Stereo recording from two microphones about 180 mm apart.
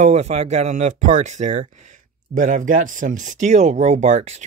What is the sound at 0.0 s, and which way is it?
Speech, 35° right (ahead or behind).